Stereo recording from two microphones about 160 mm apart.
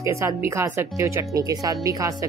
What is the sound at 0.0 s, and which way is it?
Speech, 20° right (ahead or behind).